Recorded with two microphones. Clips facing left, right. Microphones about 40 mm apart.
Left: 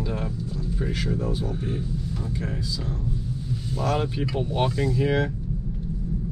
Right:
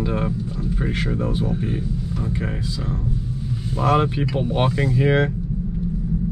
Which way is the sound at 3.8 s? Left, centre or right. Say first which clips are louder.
Right 7 dB; right.